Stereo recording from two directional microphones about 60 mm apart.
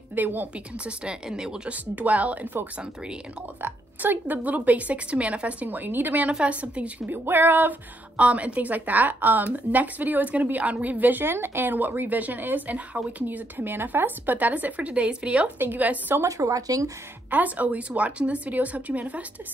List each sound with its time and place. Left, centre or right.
0.1 s speech: right
0.8 s speech: centre
1.7 s a woman's voice: right
7.1 s a sound: right
8.2 s a woman's voice: right
16.3 s speech: right
17.3 s a woman's voice: right